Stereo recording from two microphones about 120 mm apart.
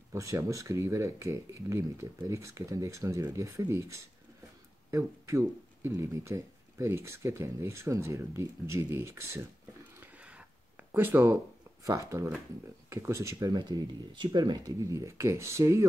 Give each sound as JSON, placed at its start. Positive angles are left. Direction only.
{"t": 0.1, "sound": "speech", "side_deg": -25}
{"t": 9.9, "sound": "a sound", "side_deg": -10}
{"t": 10.9, "sound": "speech", "side_deg": -20}